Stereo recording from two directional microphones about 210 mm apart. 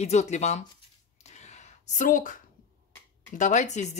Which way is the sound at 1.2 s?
35° left (ahead or behind).